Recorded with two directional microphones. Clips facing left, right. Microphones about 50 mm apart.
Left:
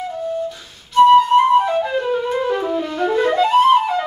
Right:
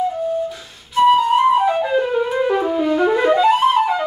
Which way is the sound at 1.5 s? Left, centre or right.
Centre.